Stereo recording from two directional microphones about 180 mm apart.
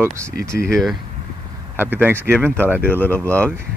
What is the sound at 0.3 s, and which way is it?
Speech, 50° left (ahead or behind).